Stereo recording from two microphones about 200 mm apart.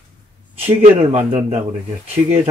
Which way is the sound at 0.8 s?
35° right (ahead or behind).